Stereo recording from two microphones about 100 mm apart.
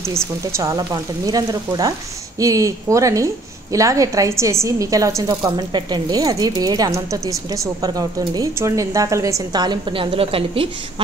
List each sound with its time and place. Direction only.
0.5 s a woman's voice: 30° right (ahead or behind); by 10.7 s 70° right (ahead or behind)